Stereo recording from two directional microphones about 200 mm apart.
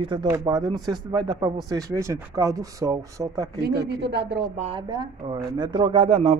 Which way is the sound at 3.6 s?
55° right (ahead or behind).